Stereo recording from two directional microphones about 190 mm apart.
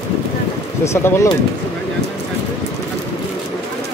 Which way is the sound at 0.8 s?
15° left (ahead or behind).